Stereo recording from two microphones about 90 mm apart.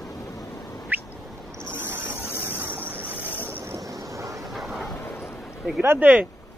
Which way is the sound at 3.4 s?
25° right (ahead or behind).